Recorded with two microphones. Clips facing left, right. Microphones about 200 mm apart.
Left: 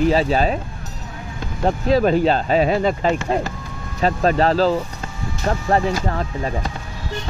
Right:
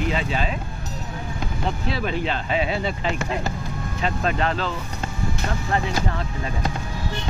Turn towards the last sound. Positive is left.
turn(degrees=40)  # may be behind; listen again after turning